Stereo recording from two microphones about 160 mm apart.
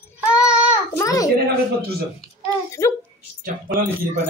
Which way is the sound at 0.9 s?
20° left (ahead or behind).